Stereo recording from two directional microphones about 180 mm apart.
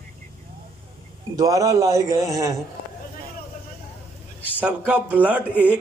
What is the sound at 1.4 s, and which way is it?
A man's voice, 20° right (ahead or behind).